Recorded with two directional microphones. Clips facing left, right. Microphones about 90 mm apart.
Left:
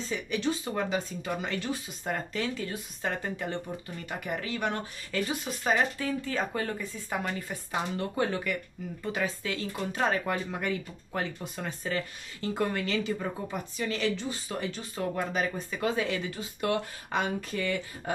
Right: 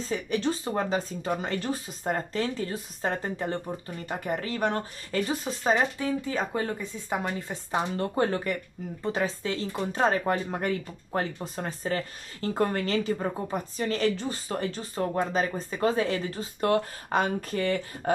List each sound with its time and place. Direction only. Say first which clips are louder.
0.0 s speech: right 3 dB; 40° right (ahead or behind); by 7.8 s 25° right (ahead or behind)
7.9 s speech: right 2 dB; 40° right (ahead or behind)